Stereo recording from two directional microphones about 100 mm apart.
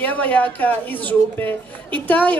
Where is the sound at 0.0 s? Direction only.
15° left (ahead or behind).